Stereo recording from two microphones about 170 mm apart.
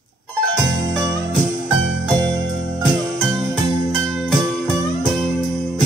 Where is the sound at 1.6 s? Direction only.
Centre (ahead or behind).